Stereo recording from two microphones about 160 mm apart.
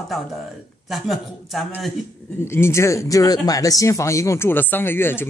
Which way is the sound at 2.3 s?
15° left (ahead or behind).